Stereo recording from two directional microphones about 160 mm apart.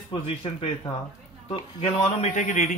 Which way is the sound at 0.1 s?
35° left (ahead or behind).